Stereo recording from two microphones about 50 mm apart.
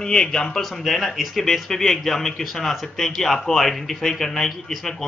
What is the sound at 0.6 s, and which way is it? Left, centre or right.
Speech, centre.